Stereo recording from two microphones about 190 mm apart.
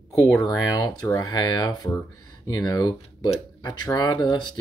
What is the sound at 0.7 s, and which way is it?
Speech, 20° left (ahead or behind).